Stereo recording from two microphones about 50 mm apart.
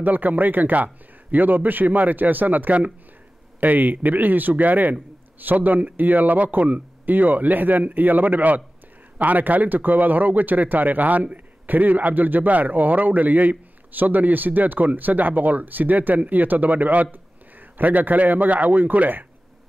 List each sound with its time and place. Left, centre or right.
0.0 s a man's voice: right